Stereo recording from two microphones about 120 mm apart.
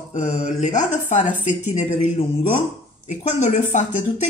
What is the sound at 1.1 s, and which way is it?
Speech, 90° left.